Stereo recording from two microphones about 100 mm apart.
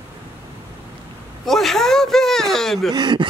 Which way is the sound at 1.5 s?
Centre (ahead or behind).